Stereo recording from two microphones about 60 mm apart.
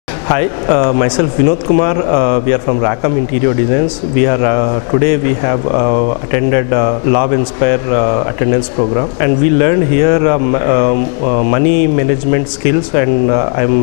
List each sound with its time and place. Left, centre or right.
0.3 s speech: left